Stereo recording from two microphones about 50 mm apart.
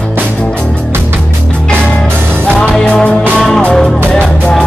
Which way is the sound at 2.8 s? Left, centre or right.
Centre.